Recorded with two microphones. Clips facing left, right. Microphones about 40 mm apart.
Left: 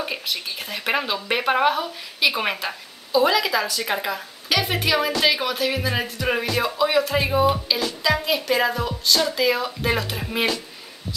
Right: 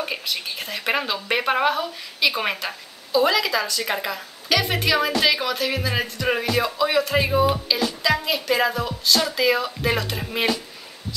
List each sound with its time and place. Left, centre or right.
0.0 s speech: centre